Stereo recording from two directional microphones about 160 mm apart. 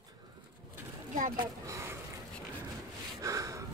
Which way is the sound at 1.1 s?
55° right (ahead or behind).